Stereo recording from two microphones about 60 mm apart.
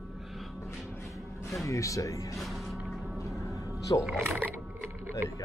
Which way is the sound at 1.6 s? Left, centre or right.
Left.